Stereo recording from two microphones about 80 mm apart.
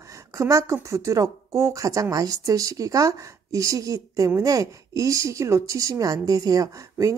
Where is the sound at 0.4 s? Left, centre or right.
Right.